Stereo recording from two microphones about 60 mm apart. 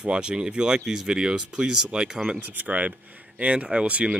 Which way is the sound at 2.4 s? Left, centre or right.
Right.